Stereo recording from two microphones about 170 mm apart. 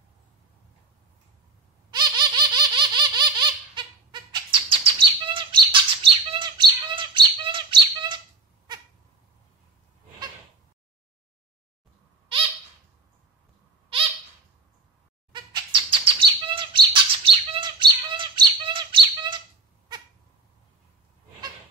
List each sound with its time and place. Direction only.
1.9 s baby laughter: 25° right (ahead or behind)
15.3 s bird: 30° right (ahead or behind)